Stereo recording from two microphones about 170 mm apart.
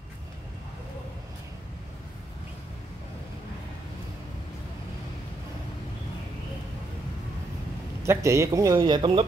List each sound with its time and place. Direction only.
8.0 s speech: 15° right (ahead or behind)